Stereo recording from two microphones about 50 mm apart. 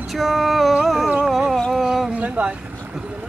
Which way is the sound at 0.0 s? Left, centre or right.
Centre.